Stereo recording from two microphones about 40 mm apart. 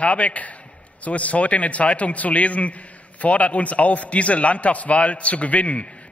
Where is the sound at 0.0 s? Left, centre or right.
Left.